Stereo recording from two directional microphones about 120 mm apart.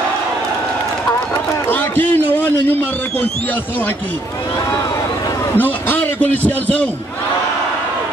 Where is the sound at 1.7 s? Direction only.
15° left (ahead or behind).